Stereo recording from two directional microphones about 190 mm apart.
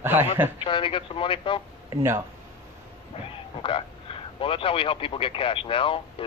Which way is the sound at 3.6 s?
30° left (ahead or behind).